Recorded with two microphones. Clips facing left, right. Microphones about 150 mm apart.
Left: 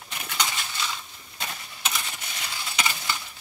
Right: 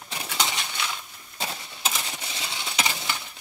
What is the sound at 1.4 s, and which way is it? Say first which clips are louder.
Coin: right 2 dB; 30° right (ahead or behind).